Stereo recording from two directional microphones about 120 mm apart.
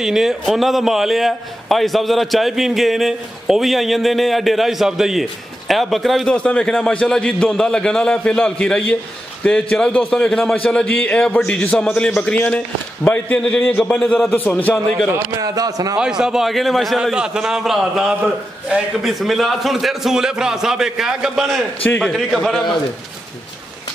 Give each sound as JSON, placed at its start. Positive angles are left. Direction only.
{"t": 0.0, "sound": "a man's voice", "side_deg": -5}
{"t": 15.1, "sound": "speech", "side_deg": -30}
{"t": 16.0, "sound": "a man's voice", "side_deg": -5}